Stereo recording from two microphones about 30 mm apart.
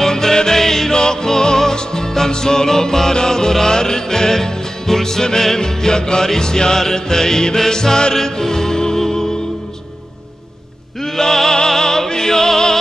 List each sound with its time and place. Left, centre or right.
0.0 s music: centre
11.0 s music: centre